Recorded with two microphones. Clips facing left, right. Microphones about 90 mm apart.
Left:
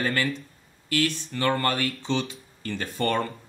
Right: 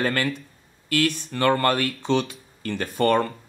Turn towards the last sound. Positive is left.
turn(degrees=-55)  # may be behind; listen again after turning